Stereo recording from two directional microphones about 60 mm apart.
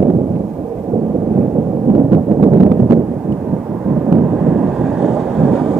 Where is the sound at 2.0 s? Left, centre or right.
Right.